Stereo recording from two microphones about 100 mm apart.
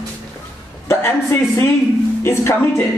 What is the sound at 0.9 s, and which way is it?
A man's voice, 25° left (ahead or behind).